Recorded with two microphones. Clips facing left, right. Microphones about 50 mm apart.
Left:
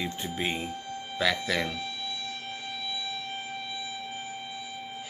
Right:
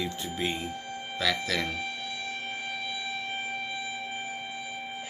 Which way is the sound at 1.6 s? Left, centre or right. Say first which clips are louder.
Even; right.